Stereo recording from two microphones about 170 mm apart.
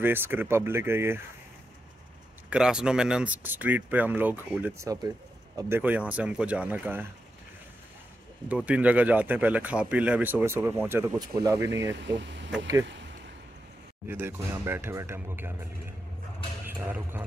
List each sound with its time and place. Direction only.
0.0 s speech: 10° right (ahead or behind)
2.5 s speech: 5° right (ahead or behind)
8.5 s speech: 10° right (ahead or behind)
11.7 s speech: 90° right
12.8 s a sound: 90° right
14.0 s speech: 15° right (ahead or behind)